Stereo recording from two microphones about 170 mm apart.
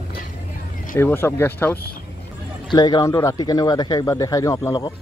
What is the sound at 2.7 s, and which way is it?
Speech, 25° left (ahead or behind).